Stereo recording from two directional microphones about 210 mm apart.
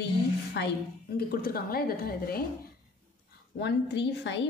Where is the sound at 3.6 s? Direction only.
55° left (ahead or behind).